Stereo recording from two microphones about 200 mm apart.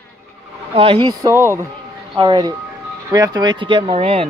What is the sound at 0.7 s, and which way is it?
Speech, 25° right (ahead or behind).